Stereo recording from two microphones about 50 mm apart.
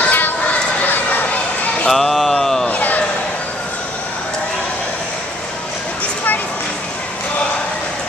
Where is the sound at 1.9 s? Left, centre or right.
Centre.